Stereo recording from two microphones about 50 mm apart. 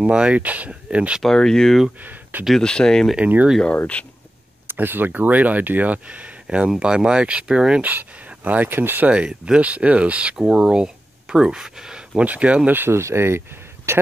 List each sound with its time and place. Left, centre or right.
0.1 s speech: centre
0.4 s speech: right
1.2 s speech: centre
3.2 s speech: right
3.7 s speech: left
4.7 s speech: right; by 7.8 s centre
7.8 s speech: right
8.6 s speech: right
9.1 s speech: right
10.3 s speech: centre
12.6 s speech: right
12.9 s a man's voice: right